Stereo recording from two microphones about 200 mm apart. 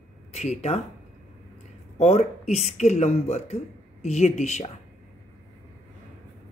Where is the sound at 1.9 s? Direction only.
35° left (ahead or behind).